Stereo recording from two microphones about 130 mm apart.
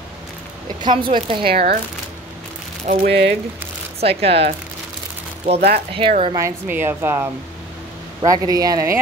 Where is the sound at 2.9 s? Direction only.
90° right.